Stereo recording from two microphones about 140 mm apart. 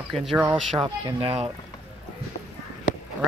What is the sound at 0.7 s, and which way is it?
Speech, 40° right (ahead or behind).